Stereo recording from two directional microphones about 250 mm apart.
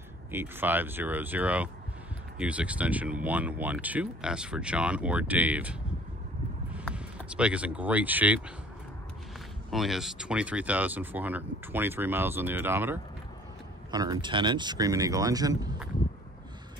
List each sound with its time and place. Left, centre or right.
0.3 s speech: centre
9.7 s speech: centre